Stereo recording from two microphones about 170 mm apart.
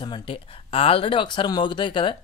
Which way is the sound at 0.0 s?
30° left (ahead or behind).